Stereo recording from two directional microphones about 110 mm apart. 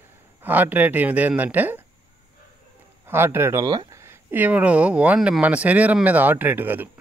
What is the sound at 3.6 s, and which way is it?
Speech, 40° right (ahead or behind).